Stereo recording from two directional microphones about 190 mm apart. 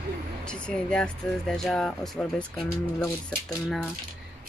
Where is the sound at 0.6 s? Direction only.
5° left (ahead or behind).